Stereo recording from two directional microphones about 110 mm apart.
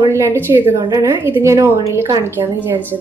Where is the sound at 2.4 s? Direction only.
20° right (ahead or behind).